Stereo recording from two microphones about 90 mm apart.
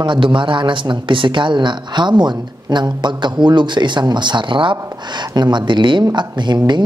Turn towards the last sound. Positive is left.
turn(degrees=-55)  # may be behind; listen again after turning